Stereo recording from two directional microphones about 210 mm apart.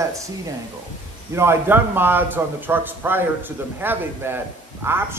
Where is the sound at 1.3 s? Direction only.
10° right (ahead or behind).